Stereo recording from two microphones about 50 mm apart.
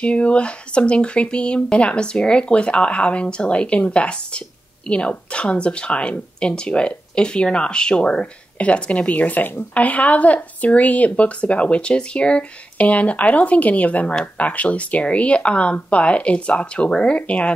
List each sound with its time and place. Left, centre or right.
0.0 s speech: left
9.8 s speech: left